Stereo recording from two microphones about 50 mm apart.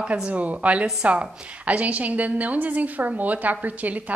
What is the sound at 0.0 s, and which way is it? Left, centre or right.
A woman's voice, right.